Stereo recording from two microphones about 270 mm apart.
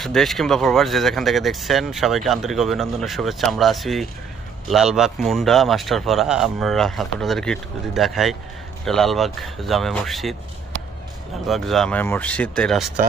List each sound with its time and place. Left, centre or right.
0.0 s speech: centre
11.4 s speech: centre